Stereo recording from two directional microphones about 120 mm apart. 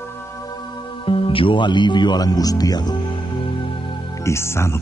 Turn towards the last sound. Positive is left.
turn(degrees=20)  # may be behind; listen again after turning